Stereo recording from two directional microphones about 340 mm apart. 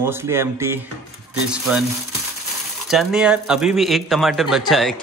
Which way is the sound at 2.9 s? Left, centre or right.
Centre.